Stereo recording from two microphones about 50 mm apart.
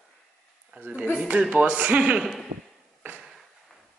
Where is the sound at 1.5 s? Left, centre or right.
Right.